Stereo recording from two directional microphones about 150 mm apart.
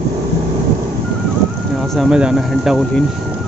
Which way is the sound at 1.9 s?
5° right (ahead or behind).